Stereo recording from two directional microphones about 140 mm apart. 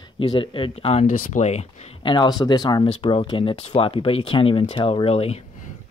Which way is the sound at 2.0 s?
35° left (ahead or behind).